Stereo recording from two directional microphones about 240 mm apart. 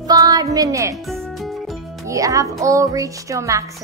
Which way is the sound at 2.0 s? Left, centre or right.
Centre.